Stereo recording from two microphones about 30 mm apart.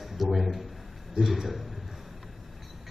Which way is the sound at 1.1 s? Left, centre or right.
Centre.